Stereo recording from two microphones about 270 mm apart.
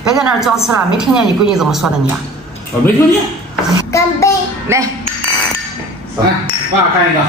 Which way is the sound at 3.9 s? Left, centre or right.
Centre.